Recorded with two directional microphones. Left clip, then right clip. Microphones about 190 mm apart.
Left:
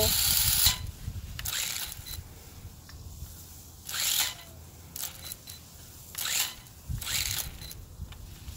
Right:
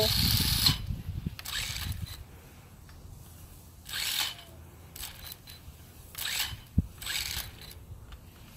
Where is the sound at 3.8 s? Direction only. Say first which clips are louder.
Left 2 dB; 15° left (ahead or behind).